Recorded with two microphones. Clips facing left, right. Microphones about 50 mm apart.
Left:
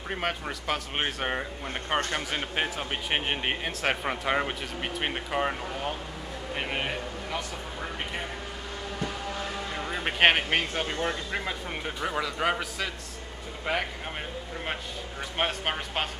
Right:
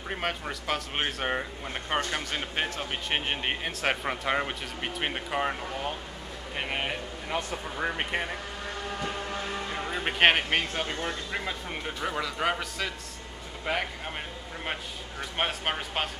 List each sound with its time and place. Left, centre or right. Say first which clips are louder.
0.1 s speech: left 1 dB; centre
7.3 s speech: right 6 dB; right
9.8 s speech: even; centre
15.3 s speech: left 1 dB; centre